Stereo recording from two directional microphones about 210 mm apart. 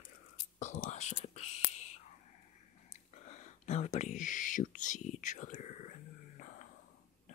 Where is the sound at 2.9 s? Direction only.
35° left (ahead or behind).